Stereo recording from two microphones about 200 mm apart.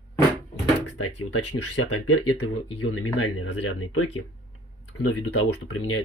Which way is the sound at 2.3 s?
80° left.